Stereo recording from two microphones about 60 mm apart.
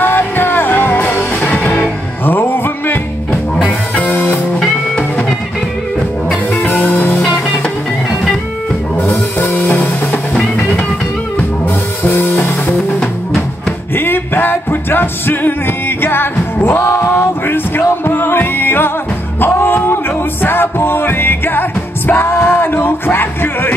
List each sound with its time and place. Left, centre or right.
0.0 s music: left
4.0 s music: left
6.6 s music: left
9.4 s music: left
12.1 s music: left
12.7 s music: centre
13.9 s music: left
16.6 s music: left